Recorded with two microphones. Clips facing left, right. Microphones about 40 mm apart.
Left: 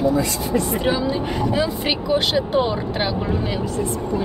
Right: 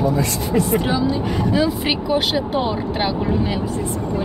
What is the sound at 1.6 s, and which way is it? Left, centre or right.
Speech, centre.